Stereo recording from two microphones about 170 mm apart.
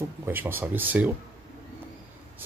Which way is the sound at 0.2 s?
15° right (ahead or behind).